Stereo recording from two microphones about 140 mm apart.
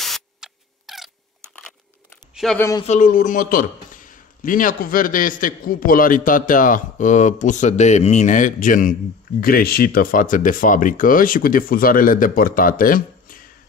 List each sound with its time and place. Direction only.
0.0 s a sound: centre (ahead or behind)
2.4 s speech: centre (ahead or behind)
2.9 s a man's voice: 70° left (ahead or behind)
9.4 s speech: 90° left